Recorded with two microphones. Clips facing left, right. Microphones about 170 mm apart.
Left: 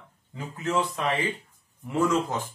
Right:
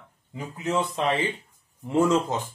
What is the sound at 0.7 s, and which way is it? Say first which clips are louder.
Speech: right 2 dB; 30° right (ahead or behind).